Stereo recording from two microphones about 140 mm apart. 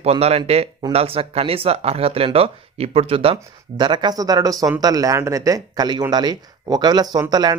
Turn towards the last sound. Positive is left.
turn(degrees=-30)  # may be behind; listen again after turning